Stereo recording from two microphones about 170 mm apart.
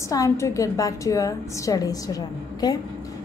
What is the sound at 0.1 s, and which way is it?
A woman's voice, 20° left (ahead or behind).